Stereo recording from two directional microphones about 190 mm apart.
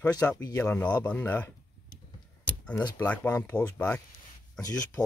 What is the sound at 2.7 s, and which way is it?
Speech, 10° left (ahead or behind).